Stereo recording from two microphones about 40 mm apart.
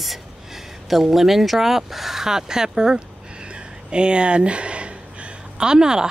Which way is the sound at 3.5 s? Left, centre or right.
Right.